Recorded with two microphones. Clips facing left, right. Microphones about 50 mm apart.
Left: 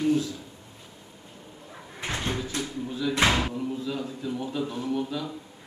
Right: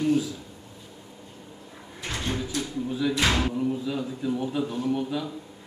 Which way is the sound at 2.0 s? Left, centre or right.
Left.